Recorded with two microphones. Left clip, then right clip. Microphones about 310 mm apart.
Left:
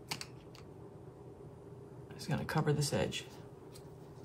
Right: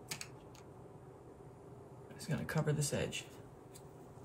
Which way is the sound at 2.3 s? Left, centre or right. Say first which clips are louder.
Left 4 dB; centre.